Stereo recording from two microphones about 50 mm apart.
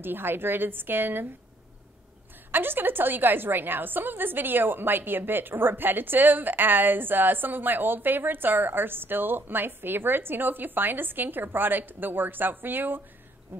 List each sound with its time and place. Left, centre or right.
0.0 s a woman's voice: right
2.5 s a woman's voice: right